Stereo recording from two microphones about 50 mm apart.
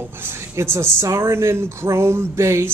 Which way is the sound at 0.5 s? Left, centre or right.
Right.